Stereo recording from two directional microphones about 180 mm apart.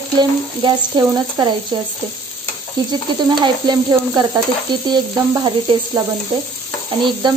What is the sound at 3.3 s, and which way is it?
Frying, 25° right (ahead or behind).